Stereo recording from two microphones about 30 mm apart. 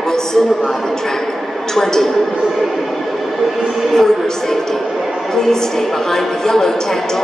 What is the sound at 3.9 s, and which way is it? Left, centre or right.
A woman's voice, centre.